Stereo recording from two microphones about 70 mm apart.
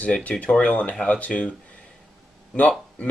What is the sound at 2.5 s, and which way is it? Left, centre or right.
Speech, centre.